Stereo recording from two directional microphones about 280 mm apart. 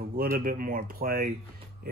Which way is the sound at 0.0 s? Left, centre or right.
Right.